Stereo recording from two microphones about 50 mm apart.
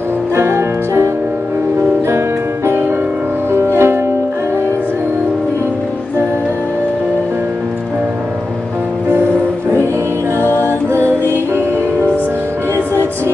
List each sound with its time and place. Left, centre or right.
0.4 s music: right
10.4 s music: left
11.2 s music: right